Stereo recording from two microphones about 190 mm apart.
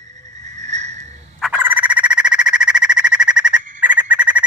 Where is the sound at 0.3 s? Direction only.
40° right (ahead or behind).